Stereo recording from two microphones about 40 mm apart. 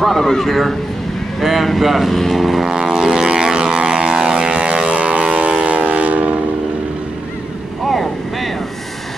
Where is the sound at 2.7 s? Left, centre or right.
Centre; by 6.2 s right.